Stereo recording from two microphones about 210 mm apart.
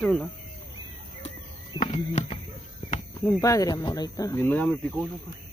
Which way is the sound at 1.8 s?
35° left (ahead or behind).